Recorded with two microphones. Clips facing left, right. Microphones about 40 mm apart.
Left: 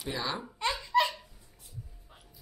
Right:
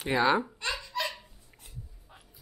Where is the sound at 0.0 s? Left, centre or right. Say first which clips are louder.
Right 10 dB; right.